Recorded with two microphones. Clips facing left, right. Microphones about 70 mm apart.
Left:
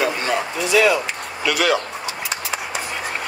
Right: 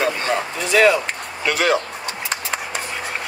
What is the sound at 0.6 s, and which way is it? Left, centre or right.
Speech, right.